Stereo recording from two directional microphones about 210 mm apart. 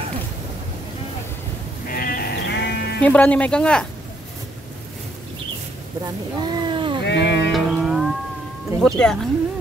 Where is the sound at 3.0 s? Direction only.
5° left (ahead or behind).